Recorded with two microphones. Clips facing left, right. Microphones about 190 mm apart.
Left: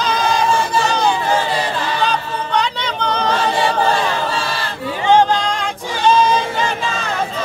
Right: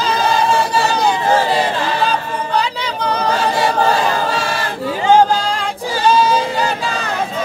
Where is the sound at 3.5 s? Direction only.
40° right (ahead or behind).